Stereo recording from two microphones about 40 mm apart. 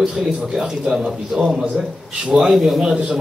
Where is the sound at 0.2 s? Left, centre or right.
Centre.